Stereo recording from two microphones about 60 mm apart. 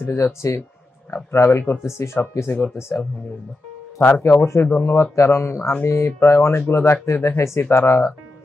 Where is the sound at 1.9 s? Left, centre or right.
Left.